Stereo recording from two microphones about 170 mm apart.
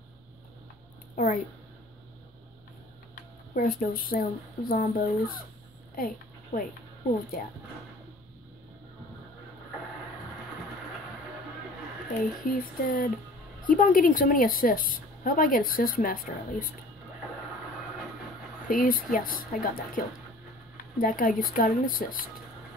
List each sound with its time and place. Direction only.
1.1 s speech: 50° left (ahead or behind)
3.5 s a woman's voice: 60° left (ahead or behind)
5.9 s a sound: 55° left (ahead or behind)
12.1 s a woman's voice: 55° left (ahead or behind)
18.7 s a woman's voice: 55° left (ahead or behind)
21.0 s a woman's voice: 55° left (ahead or behind)